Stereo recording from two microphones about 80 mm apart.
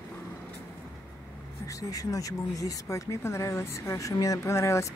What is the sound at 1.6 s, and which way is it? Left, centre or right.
Speech, left.